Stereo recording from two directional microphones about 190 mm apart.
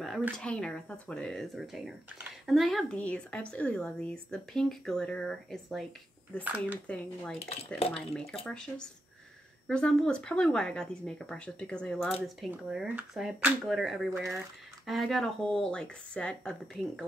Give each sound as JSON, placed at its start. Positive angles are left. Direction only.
{"t": 0.0, "sound": "speech", "side_deg": 0}
{"t": 7.3, "sound": "speech", "side_deg": 30}
{"t": 7.9, "sound": "speech", "side_deg": 0}